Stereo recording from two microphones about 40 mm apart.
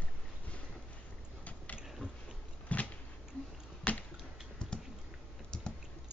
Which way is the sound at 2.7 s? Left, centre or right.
Left.